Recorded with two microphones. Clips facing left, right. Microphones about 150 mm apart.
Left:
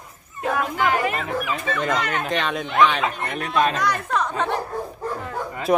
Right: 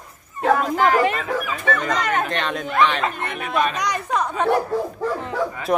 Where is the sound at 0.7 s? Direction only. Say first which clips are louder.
Right 4 dB; 40° right (ahead or behind).